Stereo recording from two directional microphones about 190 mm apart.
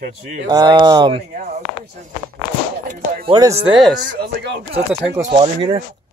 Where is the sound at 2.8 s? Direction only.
45° right (ahead or behind).